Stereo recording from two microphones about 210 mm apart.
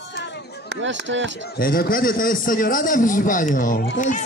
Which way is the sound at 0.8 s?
60° right (ahead or behind).